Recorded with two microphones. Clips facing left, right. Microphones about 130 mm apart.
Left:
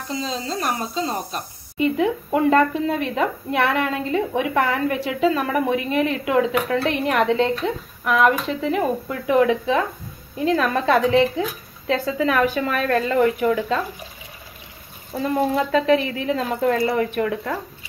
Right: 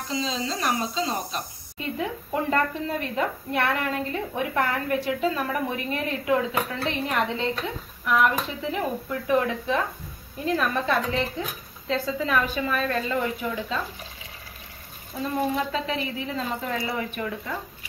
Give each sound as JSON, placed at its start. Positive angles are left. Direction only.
{"t": 0.1, "sound": "speech", "side_deg": 45}
{"t": 1.8, "sound": "a woman's voice", "side_deg": 80}
{"t": 9.3, "sound": "a woman's voice", "side_deg": 90}
{"t": 15.5, "sound": "speech", "side_deg": 65}